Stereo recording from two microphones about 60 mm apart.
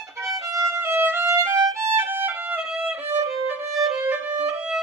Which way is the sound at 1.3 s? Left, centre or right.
Right.